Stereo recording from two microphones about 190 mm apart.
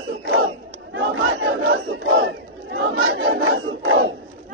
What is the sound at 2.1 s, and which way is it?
Battle cry, 70° right (ahead or behind).